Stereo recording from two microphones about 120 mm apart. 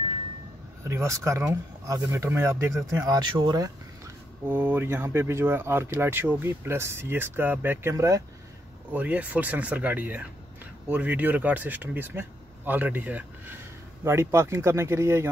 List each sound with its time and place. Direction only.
0.8 s speech: 25° right (ahead or behind)
3.3 s a sound: 35° right (ahead or behind)
4.5 s speech: 15° right (ahead or behind)
8.9 s speech: 15° right (ahead or behind)